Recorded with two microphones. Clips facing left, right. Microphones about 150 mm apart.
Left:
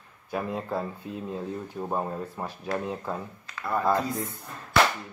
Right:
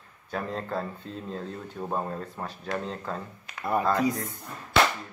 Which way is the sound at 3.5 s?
20° right (ahead or behind).